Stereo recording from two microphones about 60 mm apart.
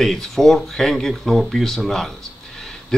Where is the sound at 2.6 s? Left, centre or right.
Centre.